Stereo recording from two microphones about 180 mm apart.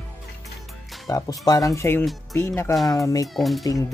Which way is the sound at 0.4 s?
Centre (ahead or behind).